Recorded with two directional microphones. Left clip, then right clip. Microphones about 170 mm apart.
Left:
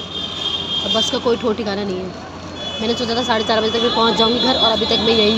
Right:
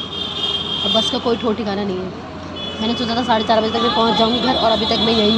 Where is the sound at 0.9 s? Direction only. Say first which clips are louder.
Left 1 dB; 5° left (ahead or behind).